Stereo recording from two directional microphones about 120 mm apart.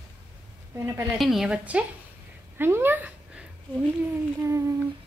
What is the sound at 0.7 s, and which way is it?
Speech, 25° right (ahead or behind).